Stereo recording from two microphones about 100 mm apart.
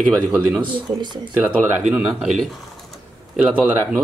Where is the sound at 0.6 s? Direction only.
50° right (ahead or behind).